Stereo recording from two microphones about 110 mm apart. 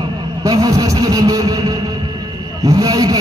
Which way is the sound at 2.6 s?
35° right (ahead or behind).